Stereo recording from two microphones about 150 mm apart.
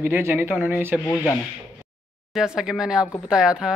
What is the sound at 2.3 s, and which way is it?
Speech, 5° right (ahead or behind).